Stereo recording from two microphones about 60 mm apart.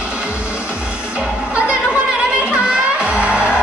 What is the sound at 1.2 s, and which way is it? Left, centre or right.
Music, centre.